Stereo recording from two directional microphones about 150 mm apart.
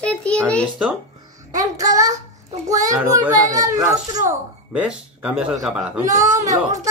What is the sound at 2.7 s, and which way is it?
A child's voice, 25° right (ahead or behind).